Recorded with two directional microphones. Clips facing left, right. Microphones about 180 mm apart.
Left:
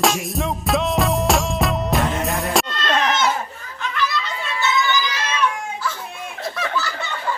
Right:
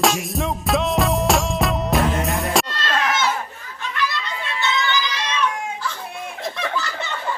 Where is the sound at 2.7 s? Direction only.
25° left (ahead or behind).